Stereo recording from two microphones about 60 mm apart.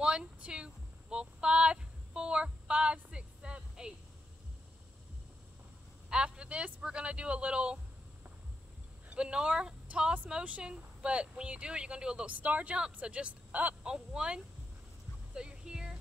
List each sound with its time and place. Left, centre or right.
0.0 s a sound: centre
6.0 s speech: centre
9.1 s speech: centre
12.3 s speech: right
13.8 s speech: centre
15.3 s a sound: centre